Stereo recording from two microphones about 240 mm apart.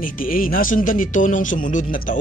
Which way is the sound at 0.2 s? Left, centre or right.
Left.